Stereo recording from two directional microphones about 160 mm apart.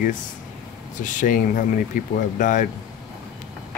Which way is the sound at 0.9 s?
50° left (ahead or behind).